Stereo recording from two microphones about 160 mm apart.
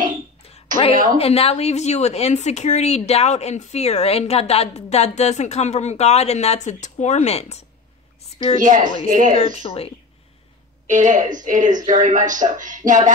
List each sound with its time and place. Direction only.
1.1 s speech: 40° left (ahead or behind)
8.5 s speech: 55° right (ahead or behind)
9.6 s speech: 40° left (ahead or behind)
10.9 s speech: 50° right (ahead or behind)